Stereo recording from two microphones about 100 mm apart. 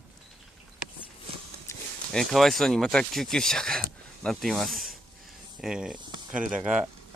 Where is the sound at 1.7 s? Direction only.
30° left (ahead or behind).